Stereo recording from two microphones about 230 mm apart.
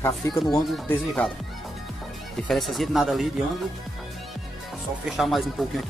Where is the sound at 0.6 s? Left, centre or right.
Centre.